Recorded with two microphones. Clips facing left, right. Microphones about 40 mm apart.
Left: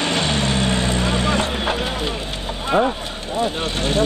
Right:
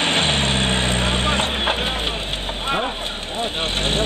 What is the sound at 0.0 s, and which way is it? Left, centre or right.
Vehicle, right.